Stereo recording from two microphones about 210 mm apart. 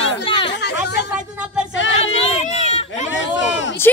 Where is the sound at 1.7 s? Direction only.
65° left (ahead or behind).